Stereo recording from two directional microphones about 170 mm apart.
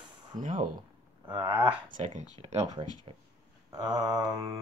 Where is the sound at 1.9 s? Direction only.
45° right (ahead or behind).